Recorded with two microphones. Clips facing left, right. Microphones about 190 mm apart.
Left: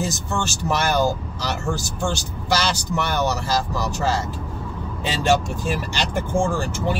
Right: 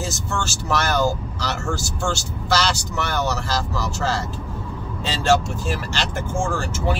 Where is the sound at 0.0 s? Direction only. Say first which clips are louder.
Left 2 dB; 15° left (ahead or behind).